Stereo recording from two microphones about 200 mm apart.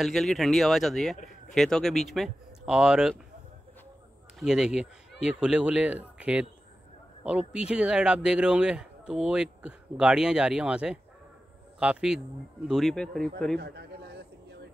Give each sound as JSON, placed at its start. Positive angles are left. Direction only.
{"t": 0.0, "sound": "speech", "side_deg": 0}
{"t": 4.4, "sound": "speech", "side_deg": -5}
{"t": 13.6, "sound": "a sound", "side_deg": -55}